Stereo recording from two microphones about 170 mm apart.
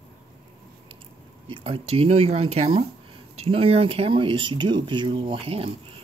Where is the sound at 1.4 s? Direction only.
30° right (ahead or behind).